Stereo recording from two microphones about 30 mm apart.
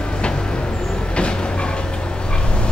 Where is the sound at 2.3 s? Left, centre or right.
Left.